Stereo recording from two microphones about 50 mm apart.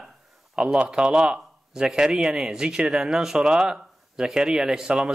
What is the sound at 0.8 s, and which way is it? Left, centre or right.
A man's voice, centre.